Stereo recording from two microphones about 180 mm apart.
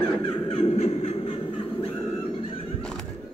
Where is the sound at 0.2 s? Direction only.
35° left (ahead or behind).